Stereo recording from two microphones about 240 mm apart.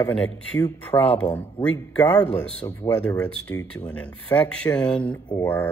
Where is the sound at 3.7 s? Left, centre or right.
Centre.